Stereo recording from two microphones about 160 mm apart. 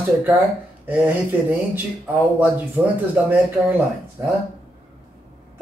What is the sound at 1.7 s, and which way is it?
Speech, 10° right (ahead or behind).